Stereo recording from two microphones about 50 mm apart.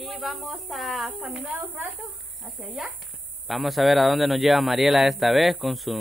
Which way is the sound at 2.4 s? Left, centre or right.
Centre.